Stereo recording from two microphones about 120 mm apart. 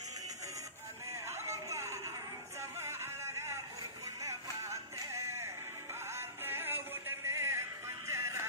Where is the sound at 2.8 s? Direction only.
20° right (ahead or behind).